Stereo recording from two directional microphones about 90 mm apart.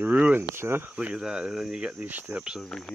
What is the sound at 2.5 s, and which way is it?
Speech, centre (ahead or behind).